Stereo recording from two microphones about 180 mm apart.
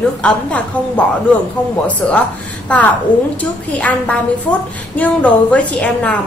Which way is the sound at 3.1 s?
45° left (ahead or behind).